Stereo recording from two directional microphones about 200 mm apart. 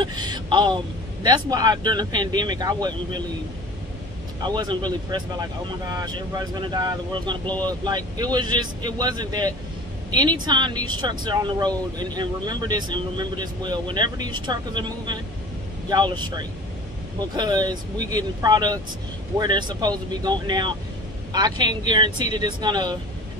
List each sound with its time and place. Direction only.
0.0 s speech: 20° right (ahead or behind)
4.4 s speech: 20° right (ahead or behind)